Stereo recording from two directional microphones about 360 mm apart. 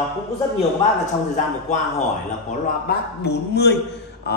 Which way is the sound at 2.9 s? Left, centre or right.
Left.